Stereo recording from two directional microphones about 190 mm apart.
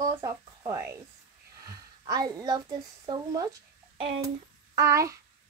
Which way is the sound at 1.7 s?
20° right (ahead or behind).